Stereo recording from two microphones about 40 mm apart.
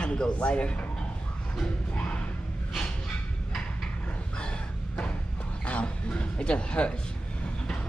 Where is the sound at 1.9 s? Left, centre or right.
Left.